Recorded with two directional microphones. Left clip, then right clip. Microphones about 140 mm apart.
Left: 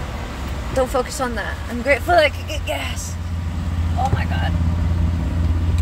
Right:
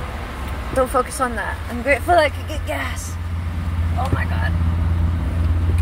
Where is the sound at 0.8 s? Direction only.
40° left (ahead or behind).